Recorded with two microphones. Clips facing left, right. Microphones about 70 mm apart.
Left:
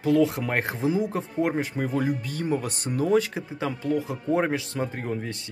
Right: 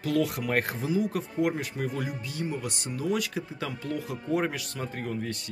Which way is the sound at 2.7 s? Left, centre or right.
Left.